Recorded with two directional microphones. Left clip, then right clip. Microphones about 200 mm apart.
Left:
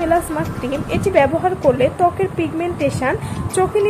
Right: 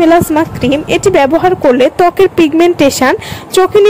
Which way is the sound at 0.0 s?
50° right (ahead or behind).